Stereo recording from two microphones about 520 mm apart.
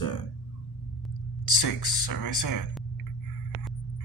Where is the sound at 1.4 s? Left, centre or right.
Left.